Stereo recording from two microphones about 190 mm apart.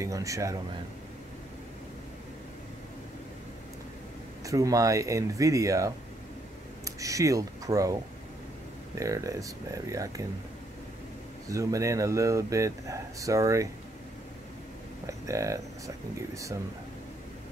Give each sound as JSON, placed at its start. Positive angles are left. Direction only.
{"t": 0.0, "sound": "speech", "side_deg": -15}
{"t": 4.5, "sound": "speech", "side_deg": -15}
{"t": 11.4, "sound": "speech", "side_deg": -15}
{"t": 15.0, "sound": "speech", "side_deg": -15}